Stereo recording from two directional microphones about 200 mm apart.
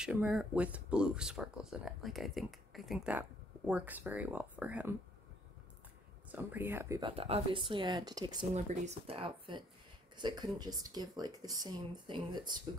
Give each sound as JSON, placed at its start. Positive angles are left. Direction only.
{"t": 0.0, "sound": "speech", "side_deg": -5}
{"t": 6.3, "sound": "speech", "side_deg": -10}
{"t": 8.5, "sound": "speech", "side_deg": -35}